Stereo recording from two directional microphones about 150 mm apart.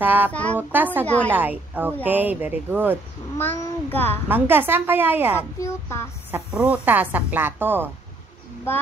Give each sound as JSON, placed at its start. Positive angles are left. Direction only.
{"t": 0.0, "sound": "a woman's voice", "side_deg": -15}
{"t": 0.3, "sound": "a child's voice", "side_deg": 10}
{"t": 0.6, "sound": "a woman's voice", "side_deg": -10}
{"t": 1.0, "sound": "a child's voice", "side_deg": 10}
{"t": 1.3, "sound": "a woman's voice", "side_deg": -10}
{"t": 3.5, "sound": "a child's voice", "side_deg": 15}
{"t": 4.3, "sound": "a woman's voice", "side_deg": -15}
{"t": 5.6, "sound": "a child's voice", "side_deg": 15}
{"t": 6.3, "sound": "a woman's voice", "side_deg": -10}